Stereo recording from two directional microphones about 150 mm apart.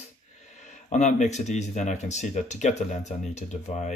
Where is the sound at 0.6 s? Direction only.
50° left (ahead or behind).